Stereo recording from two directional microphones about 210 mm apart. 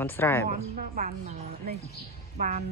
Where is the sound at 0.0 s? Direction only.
10° left (ahead or behind).